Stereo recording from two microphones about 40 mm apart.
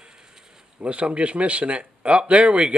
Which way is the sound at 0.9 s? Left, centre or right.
Right.